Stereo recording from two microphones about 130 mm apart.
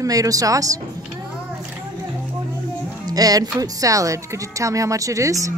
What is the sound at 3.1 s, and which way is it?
Speech, 30° right (ahead or behind).